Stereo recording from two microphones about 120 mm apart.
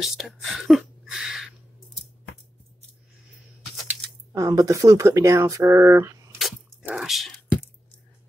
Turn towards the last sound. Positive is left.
turn(degrees=0)  # may be behind; listen again after turning